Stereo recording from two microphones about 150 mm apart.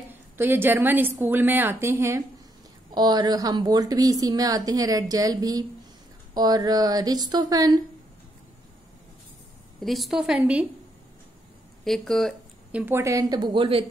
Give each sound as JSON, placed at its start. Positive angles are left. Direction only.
{"t": 0.1, "sound": "a woman's voice", "side_deg": -15}
{"t": 2.9, "sound": "a woman's voice", "side_deg": -30}
{"t": 9.8, "sound": "a woman's voice", "side_deg": 0}
{"t": 11.8, "sound": "a woman's voice", "side_deg": 0}
{"t": 12.7, "sound": "a woman's voice", "side_deg": -15}